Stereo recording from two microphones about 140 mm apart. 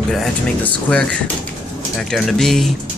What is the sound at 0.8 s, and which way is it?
A man's voice, 10° left (ahead or behind).